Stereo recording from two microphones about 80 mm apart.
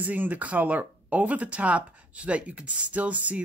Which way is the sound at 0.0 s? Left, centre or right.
Centre.